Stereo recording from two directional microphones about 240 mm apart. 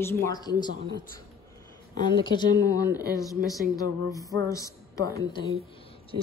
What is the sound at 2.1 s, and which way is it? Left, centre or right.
A woman's voice, centre.